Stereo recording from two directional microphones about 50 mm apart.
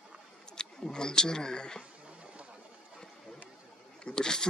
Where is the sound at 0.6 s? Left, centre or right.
Centre.